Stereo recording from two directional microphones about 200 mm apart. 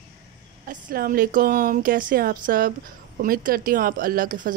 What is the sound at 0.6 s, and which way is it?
A woman's voice, 45° right (ahead or behind).